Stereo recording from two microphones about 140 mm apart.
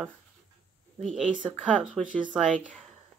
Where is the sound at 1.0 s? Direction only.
Centre (ahead or behind).